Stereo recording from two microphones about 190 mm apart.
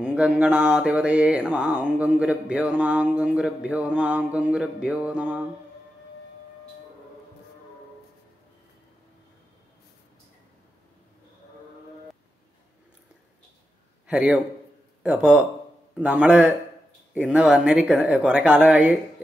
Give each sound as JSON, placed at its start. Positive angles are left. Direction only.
{"t": 0.0, "sound": "mantra", "side_deg": -5}
{"t": 14.0, "sound": "a man's voice", "side_deg": -5}
{"t": 17.1, "sound": "mantra", "side_deg": -5}